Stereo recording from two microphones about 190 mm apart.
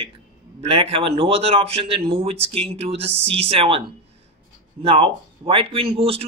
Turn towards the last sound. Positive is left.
turn(degrees=-30)  # may be behind; listen again after turning